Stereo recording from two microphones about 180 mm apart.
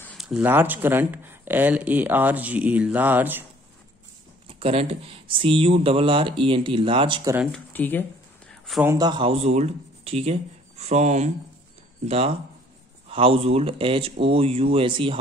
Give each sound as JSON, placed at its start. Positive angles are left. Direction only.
{"t": 0.0, "sound": "speech", "side_deg": 0}
{"t": 4.5, "sound": "speech", "side_deg": -35}
{"t": 7.5, "sound": "speech", "side_deg": 10}
{"t": 8.5, "sound": "a sound", "side_deg": 0}
{"t": 8.8, "sound": "speech", "side_deg": -20}